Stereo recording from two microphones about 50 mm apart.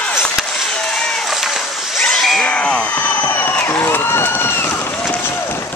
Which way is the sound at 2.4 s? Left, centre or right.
Left.